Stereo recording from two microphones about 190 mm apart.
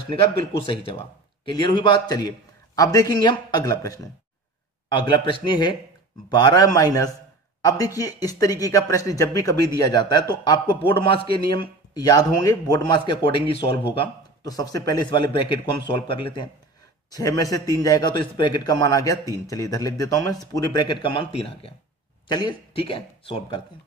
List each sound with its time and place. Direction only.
0.1 s a man's voice: 25° left (ahead or behind)